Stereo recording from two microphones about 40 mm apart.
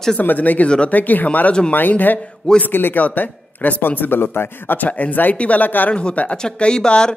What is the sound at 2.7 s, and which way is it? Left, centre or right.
Speech, left.